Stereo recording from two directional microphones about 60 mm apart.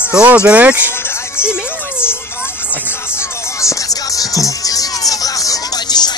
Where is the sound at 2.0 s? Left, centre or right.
Left.